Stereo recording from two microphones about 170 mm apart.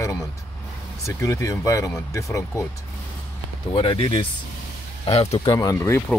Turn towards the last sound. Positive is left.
turn(degrees=10)  # may be behind; listen again after turning